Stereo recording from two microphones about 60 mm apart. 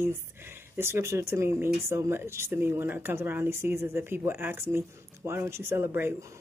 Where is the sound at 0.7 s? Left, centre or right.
Right.